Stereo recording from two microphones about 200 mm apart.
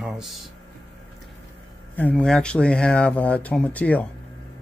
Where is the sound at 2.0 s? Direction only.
5° left (ahead or behind).